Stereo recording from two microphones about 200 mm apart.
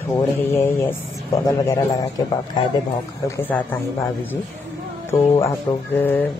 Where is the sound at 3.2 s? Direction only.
10° left (ahead or behind).